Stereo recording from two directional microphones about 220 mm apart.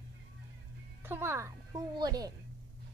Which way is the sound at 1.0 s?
10° right (ahead or behind).